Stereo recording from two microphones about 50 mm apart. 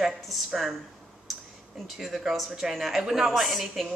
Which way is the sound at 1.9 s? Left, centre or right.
Centre.